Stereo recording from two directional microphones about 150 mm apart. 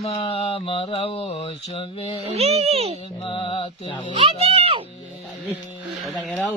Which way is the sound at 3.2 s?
35° left (ahead or behind).